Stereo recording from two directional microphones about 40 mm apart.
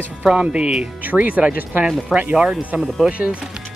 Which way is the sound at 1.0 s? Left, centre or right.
Right.